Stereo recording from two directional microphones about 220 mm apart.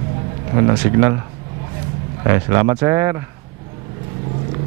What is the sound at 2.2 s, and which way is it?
Speech, 15° right (ahead or behind).